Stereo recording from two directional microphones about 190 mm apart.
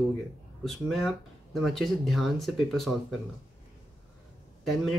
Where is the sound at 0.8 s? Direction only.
Centre (ahead or behind).